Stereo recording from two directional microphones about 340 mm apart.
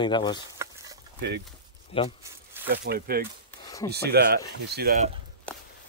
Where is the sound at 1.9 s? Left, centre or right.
Centre.